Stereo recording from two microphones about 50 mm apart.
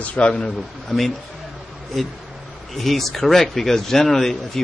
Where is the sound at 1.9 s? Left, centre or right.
Centre.